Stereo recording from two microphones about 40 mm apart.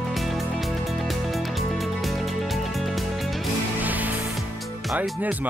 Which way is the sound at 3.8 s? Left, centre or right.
Right.